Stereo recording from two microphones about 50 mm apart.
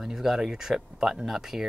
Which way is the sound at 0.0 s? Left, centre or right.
Centre.